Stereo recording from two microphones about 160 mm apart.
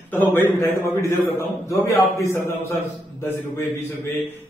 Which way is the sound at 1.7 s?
20° left (ahead or behind).